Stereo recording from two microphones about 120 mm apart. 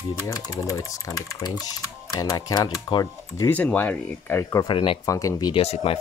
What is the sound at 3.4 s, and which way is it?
Speech, 15° left (ahead or behind).